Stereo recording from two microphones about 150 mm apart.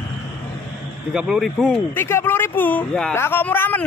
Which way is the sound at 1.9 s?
15° left (ahead or behind).